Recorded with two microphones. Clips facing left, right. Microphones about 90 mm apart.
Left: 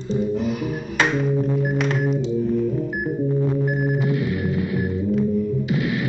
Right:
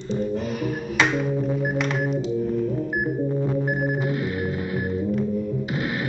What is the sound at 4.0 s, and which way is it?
Music, 40° right (ahead or behind).